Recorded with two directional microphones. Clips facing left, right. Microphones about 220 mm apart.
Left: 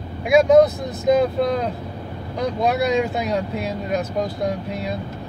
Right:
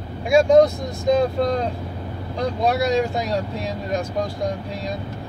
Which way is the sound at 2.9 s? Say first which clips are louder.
Even; 35° right (ahead or behind).